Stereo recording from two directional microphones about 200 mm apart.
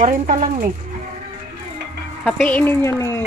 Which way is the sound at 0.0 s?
35° right (ahead or behind).